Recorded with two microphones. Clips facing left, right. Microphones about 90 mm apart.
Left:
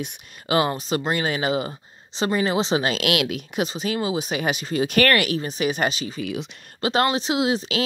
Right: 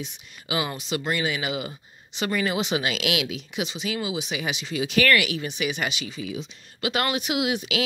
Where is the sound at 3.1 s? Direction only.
55° left (ahead or behind); by 6.2 s 40° left (ahead or behind).